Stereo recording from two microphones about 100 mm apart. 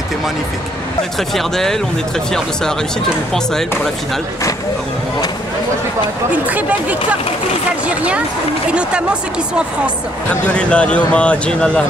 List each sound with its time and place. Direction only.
1.3 s speech: 5° left (ahead or behind)
6.3 s speech: 15° right (ahead or behind)
8.6 s speech: 10° right (ahead or behind)
10.5 s speech: 10° left (ahead or behind)